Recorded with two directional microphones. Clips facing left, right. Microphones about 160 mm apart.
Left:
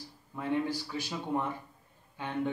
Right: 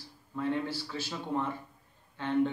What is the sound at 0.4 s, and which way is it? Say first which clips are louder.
A man's voice: left 1 dB; 15° left (ahead or behind).